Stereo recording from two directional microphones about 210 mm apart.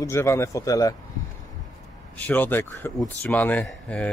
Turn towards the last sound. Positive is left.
turn(degrees=5)  # may be behind; listen again after turning